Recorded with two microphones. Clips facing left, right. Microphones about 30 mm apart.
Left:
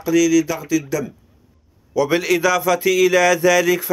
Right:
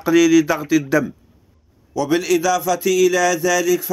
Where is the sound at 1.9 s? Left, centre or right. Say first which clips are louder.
Even; centre.